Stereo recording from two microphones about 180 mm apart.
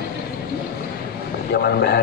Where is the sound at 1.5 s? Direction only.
60° left (ahead or behind).